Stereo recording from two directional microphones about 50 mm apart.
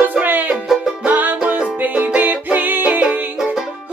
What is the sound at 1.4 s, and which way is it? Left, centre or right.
Music, right.